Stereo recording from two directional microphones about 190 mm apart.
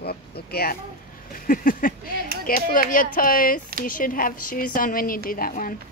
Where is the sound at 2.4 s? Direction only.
45° left (ahead or behind).